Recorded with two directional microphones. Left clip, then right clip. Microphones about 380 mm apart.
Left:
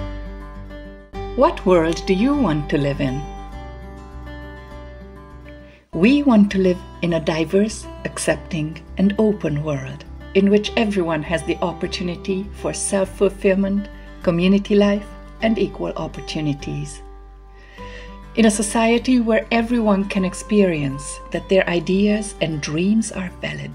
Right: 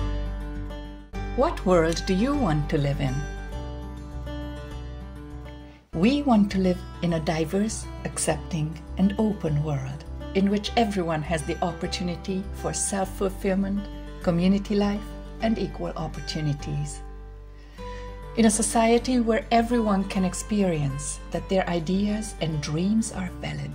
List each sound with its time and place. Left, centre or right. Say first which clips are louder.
1.4 s speech: left 6 dB; right
5.9 s speech: left 7 dB; centre
16.5 s speech: left 5 dB; right
17.8 s speech: even; centre